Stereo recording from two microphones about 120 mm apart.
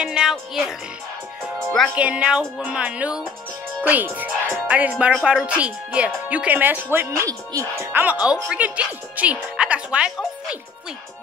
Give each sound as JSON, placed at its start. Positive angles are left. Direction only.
{"t": 0.0, "sound": "music", "side_deg": -5}
{"t": 1.6, "sound": "speech", "side_deg": 5}
{"t": 2.0, "sound": "speech", "side_deg": -10}